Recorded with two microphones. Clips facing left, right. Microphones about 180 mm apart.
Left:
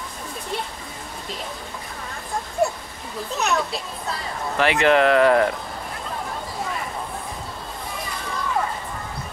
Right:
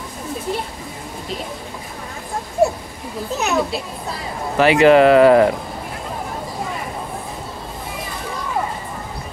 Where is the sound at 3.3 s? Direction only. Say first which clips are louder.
Right 4 dB; centre (ahead or behind).